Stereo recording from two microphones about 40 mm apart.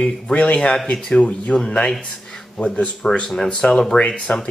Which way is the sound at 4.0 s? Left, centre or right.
Left.